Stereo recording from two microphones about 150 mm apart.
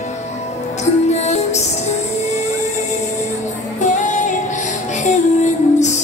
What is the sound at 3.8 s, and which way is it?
Music, 55° left (ahead or behind).